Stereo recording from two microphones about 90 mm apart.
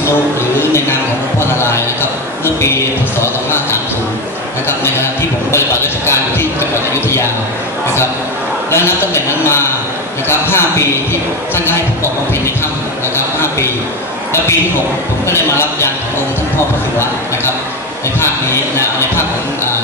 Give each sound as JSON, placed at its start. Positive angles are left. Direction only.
{"t": 0.6, "sound": "a man's voice", "side_deg": 30}
{"t": 8.7, "sound": "a man's voice", "side_deg": 30}
{"t": 15.2, "sound": "a man's voice", "side_deg": 30}
{"t": 18.2, "sound": "speech", "side_deg": 30}